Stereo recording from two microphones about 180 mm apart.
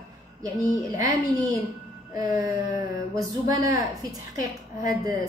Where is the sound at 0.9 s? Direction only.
20° right (ahead or behind).